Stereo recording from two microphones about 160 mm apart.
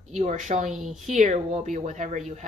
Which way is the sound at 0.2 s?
45° right (ahead or behind).